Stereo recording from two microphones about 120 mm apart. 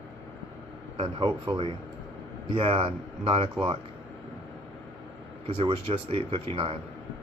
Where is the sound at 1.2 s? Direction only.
45° right (ahead or behind).